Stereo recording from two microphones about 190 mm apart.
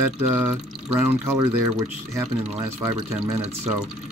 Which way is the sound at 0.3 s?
10° right (ahead or behind).